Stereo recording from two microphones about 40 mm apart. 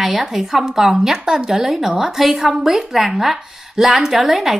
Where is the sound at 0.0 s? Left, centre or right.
Centre.